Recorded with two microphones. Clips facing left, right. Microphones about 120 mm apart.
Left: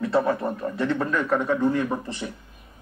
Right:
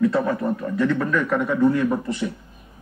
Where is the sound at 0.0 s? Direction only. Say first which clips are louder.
Right 2 dB; 30° left (ahead or behind).